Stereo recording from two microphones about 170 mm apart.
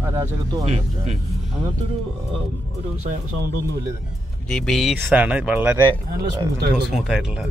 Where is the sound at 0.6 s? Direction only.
40° right (ahead or behind).